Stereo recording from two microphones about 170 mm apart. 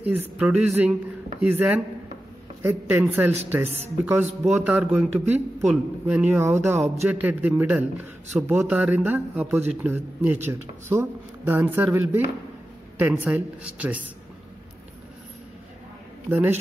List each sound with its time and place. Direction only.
0.0 s speech: 10° right (ahead or behind)
3.6 s speech: 40° right (ahead or behind)
4.0 s speech: 10° right (ahead or behind)
16.3 s speech: 10° right (ahead or behind)